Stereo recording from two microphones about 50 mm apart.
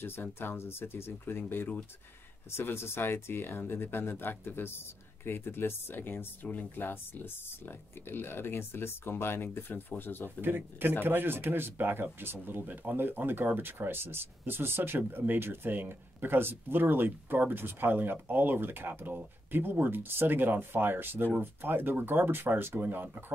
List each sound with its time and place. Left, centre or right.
0.0 s speech: left
10.4 s speech: right